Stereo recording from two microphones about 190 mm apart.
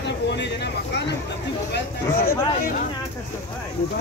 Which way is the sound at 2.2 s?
50° left (ahead or behind).